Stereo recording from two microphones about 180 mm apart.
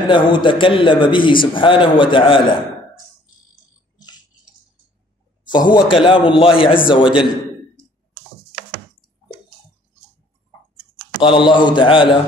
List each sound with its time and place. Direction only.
0.1 s a man's voice: 25° left (ahead or behind)
5.5 s a man's voice: 25° left (ahead or behind)
11.1 s a man's voice: 25° left (ahead or behind)